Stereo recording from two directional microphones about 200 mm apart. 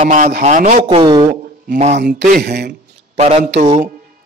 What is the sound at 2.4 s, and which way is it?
Speech, 55° right (ahead or behind).